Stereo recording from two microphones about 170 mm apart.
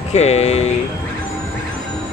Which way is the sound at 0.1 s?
40° left (ahead or behind).